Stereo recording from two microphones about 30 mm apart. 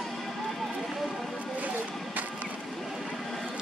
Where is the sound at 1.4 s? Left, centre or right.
Right.